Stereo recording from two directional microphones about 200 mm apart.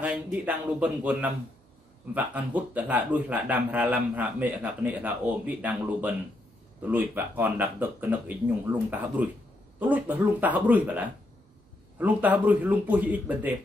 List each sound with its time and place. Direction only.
0.0 s speech: 5° right (ahead or behind)